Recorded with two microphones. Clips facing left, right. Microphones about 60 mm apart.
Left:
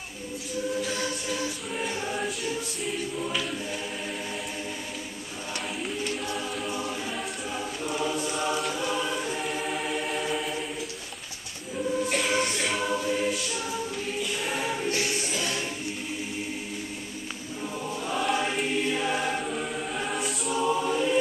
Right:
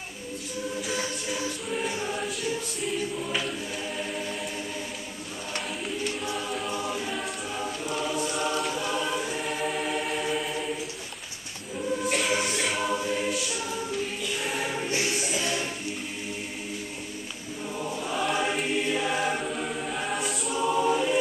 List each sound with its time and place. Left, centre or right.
1.8 s choir: centre
6.2 s choir: centre
12.1 s choir: centre
14.9 s music: centre
18.1 s choir: centre